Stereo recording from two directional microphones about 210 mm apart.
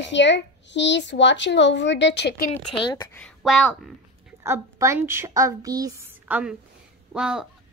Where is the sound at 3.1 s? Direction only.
Centre (ahead or behind).